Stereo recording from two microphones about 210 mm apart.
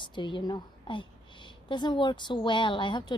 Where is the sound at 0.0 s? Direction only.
20° left (ahead or behind).